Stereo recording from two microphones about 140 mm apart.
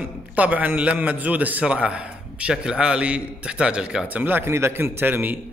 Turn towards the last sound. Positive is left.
turn(degrees=-15)  # may be behind; listen again after turning